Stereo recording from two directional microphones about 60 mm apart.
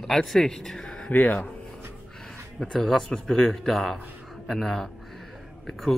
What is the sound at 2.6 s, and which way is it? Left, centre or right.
Speech, centre.